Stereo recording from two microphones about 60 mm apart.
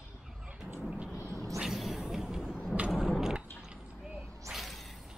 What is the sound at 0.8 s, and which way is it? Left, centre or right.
Thunder, centre.